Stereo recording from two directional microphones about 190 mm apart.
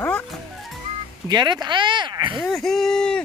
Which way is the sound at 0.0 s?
5° left (ahead or behind).